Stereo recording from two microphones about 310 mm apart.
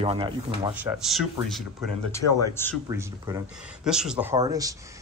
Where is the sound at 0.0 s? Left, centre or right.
Centre.